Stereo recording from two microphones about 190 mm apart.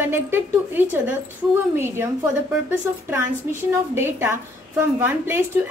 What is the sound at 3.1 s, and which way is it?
A woman's voice, 15° right (ahead or behind).